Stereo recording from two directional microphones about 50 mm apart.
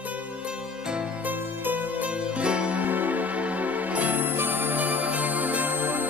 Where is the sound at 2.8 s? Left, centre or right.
Right.